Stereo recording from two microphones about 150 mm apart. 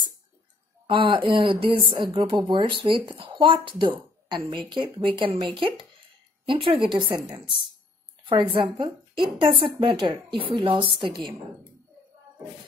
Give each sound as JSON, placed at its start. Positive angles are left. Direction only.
{"t": 0.8, "sound": "a woman's voice", "side_deg": -35}
{"t": 8.3, "sound": "a woman's voice", "side_deg": -35}